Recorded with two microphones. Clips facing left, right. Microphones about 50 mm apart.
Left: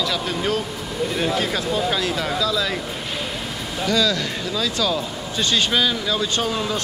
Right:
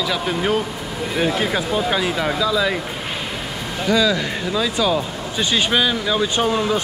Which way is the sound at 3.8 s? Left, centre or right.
Centre.